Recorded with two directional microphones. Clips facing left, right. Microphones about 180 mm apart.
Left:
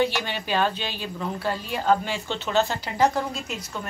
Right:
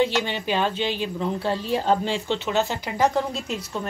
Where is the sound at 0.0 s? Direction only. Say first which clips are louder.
Right 2 dB; 20° right (ahead or behind).